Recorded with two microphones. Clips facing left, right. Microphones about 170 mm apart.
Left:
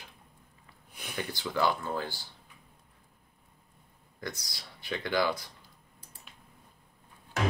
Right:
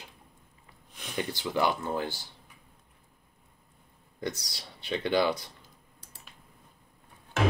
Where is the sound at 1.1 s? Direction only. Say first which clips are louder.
Right 3 dB; 20° right (ahead or behind).